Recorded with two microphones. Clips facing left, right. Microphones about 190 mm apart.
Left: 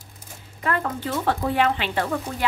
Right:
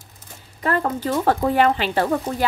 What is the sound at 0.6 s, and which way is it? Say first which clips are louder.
Speech: right 4 dB; 35° right (ahead or behind).